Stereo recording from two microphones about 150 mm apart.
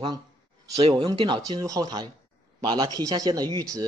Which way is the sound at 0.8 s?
35° right (ahead or behind).